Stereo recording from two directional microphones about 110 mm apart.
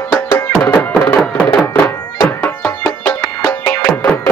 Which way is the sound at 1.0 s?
10° left (ahead or behind).